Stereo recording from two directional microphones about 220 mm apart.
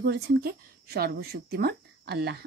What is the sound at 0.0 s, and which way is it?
Speech, 45° right (ahead or behind).